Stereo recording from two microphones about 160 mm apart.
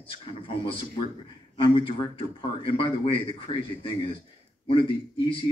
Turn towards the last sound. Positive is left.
turn(degrees=35)  # may be behind; listen again after turning